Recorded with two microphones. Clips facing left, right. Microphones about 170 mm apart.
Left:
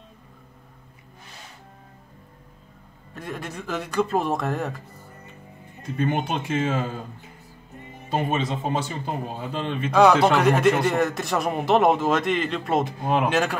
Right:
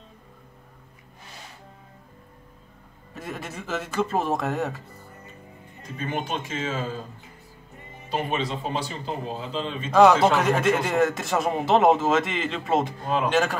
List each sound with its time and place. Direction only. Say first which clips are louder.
3.2 s a man's voice: left 1 dB; 5° right (ahead or behind)
5.8 s speech: left 6 dB; 60° left (ahead or behind)
8.1 s speech: left 2 dB; 50° left (ahead or behind)
9.8 s a man's voice: even; centre (ahead or behind)